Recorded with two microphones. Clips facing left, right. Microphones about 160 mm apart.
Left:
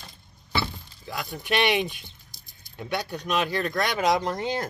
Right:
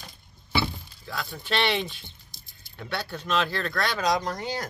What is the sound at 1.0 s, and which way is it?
Speech, 15° left (ahead or behind).